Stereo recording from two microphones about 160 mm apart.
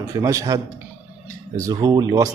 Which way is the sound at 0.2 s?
20° right (ahead or behind).